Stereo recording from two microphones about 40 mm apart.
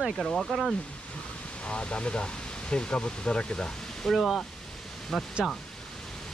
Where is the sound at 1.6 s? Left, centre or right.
Left.